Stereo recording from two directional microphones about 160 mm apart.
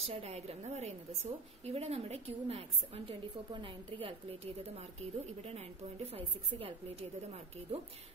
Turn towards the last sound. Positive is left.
turn(degrees=-40)  # may be behind; listen again after turning